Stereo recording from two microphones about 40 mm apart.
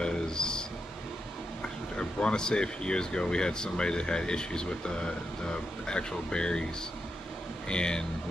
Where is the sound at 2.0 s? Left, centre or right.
Left.